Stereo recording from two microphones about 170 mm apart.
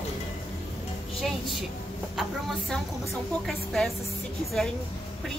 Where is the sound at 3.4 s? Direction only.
Centre (ahead or behind).